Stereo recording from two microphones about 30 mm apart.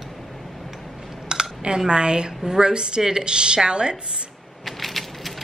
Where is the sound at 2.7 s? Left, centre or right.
Right.